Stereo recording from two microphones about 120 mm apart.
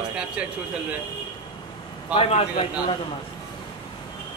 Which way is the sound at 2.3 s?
55° left (ahead or behind).